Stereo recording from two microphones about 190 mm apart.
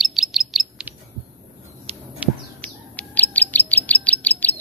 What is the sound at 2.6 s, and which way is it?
Bird, 10° left (ahead or behind).